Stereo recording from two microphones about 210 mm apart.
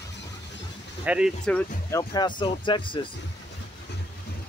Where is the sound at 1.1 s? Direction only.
5° right (ahead or behind).